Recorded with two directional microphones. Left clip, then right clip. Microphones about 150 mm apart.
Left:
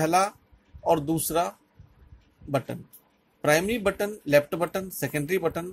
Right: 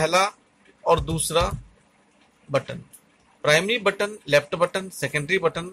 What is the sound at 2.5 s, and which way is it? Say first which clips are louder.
Speech: right 4 dB; 40° left (ahead or behind).